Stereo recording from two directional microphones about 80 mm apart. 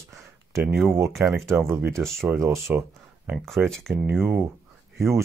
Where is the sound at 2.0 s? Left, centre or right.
Centre.